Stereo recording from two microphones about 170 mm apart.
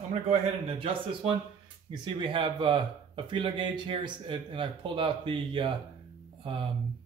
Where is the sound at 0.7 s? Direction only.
30° right (ahead or behind).